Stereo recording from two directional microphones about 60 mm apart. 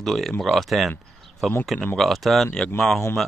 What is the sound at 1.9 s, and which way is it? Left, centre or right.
Speech, centre.